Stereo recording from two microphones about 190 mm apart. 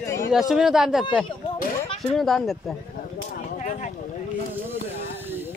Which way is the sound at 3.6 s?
40° left (ahead or behind).